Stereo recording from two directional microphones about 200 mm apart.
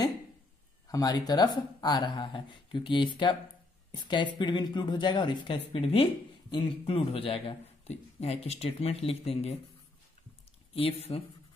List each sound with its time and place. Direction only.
0.8 s speech: 20° left (ahead or behind)
10.7 s speech: 30° left (ahead or behind)